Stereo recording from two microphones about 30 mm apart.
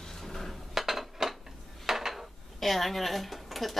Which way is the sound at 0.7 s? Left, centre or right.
Centre.